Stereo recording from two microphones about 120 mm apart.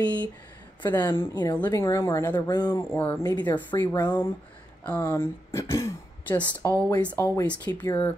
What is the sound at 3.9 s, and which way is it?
A woman's voice, 30° left (ahead or behind).